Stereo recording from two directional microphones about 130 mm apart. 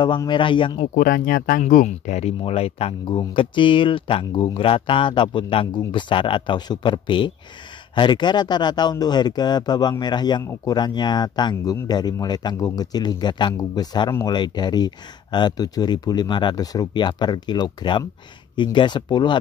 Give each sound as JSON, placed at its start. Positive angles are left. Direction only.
{"t": 0.3, "sound": "speech", "side_deg": 40}
{"t": 1.0, "sound": "speech", "side_deg": 90}